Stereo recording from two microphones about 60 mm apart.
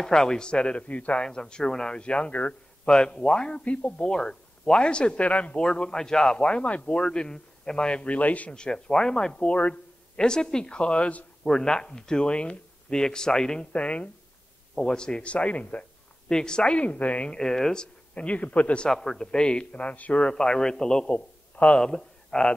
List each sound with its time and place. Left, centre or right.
0.0 s speech: centre
8.5 s speech: centre
11.4 s speech: centre
17.4 s speech: centre
18.1 s speech: left
18.9 s speech: centre
20.3 s speech: centre
21.1 s a man's voice: left
21.8 s speech: centre